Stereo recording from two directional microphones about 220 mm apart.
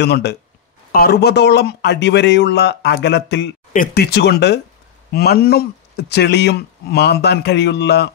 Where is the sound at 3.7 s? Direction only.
40° left (ahead or behind).